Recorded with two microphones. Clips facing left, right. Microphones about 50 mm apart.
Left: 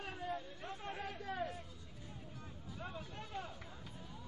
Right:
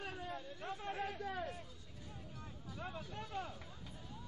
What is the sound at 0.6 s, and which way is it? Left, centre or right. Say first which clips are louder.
Chatter: right 3 dB; centre.